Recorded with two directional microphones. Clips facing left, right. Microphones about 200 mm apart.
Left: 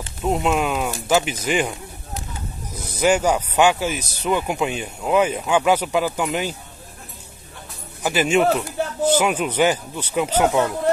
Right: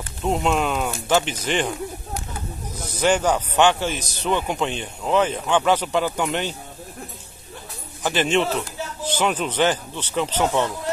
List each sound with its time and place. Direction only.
0.2 s a man's voice: 5° left (ahead or behind)
2.9 s a man's voice: 10° left (ahead or behind)
8.0 s a man's voice: 10° left (ahead or behind)
8.8 s a sound: 60° left (ahead or behind)
9.2 s a man's voice: 10° left (ahead or behind)